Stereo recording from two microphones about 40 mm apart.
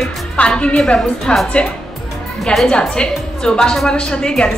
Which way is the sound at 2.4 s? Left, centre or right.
Centre.